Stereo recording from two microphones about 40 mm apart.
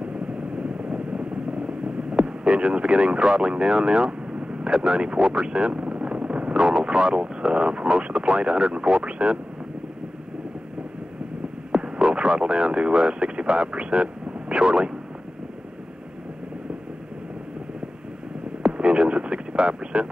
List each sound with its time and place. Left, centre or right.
0.0 s vehicle: right
11.7 s speech: right
18.6 s a sound: right